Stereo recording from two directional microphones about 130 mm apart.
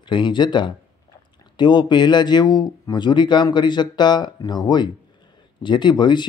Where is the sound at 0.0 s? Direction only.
35° left (ahead or behind).